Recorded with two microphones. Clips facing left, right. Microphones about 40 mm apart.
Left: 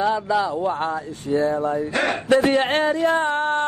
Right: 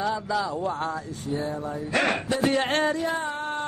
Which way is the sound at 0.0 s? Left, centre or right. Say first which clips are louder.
Left 6 dB; left.